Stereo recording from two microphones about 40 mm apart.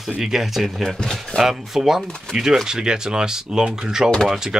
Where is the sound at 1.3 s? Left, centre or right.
Centre.